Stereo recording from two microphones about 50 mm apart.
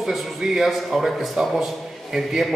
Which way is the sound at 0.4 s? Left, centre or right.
Centre.